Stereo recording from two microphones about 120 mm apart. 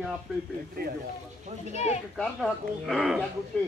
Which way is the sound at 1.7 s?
65° left (ahead or behind).